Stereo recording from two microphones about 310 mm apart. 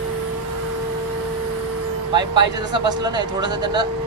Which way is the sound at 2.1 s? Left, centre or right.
Centre.